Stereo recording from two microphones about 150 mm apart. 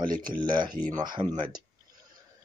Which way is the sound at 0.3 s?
30° right (ahead or behind).